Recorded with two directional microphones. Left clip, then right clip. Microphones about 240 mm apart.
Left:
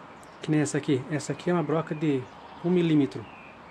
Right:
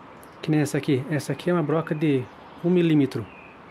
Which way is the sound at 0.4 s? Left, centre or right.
Centre.